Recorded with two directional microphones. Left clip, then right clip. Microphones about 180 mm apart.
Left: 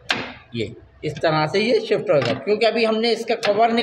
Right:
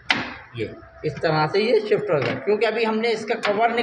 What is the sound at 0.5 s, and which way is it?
A woman's voice, 80° left.